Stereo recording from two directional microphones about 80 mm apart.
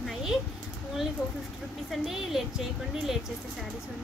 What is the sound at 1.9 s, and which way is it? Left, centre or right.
Speech, centre.